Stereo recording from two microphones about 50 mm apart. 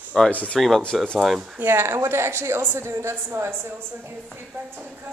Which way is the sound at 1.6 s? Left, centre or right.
Right.